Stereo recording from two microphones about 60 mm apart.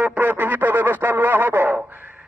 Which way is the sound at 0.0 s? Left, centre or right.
Right.